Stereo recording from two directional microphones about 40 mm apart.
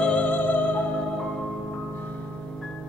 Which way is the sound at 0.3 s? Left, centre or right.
Left.